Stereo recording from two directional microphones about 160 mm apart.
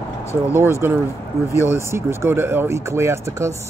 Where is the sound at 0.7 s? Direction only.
15° right (ahead or behind).